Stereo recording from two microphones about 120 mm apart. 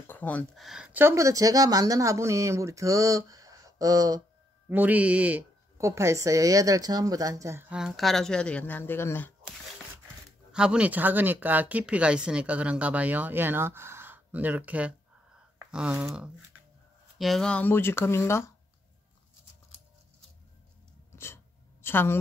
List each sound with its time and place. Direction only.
0.0 s a sound: 15° left (ahead or behind)
0.6 s speech: 5° right (ahead or behind)
0.9 s speech: 25° right (ahead or behind)
4.6 s speech: 15° right (ahead or behind)
5.8 s speech: 25° right (ahead or behind)
7.7 s speech: 5° right (ahead or behind); by 9.3 s 15° left (ahead or behind)
10.5 s speech: 10° right (ahead or behind)
17.2 s speech: 5° left (ahead or behind); by 18.5 s 20° left (ahead or behind)
21.1 s a sound: 20° left (ahead or behind)
21.8 s speech: 20° left (ahead or behind)